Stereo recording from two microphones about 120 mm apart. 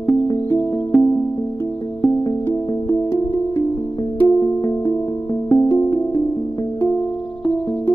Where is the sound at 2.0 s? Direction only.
30° left (ahead or behind).